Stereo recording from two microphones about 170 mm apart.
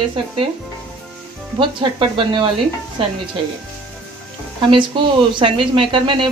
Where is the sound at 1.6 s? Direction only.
30° right (ahead or behind).